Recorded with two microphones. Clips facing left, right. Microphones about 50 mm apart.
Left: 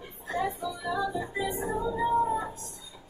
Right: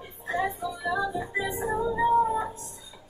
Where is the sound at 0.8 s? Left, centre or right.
Centre.